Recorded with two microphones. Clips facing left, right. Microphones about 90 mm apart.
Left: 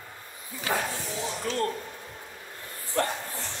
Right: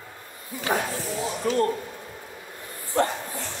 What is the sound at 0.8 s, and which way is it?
Speech, 5° right (ahead or behind).